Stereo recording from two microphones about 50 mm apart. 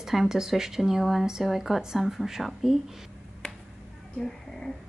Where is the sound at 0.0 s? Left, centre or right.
Centre.